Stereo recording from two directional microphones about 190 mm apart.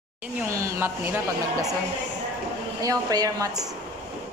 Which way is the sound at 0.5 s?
15° right (ahead or behind).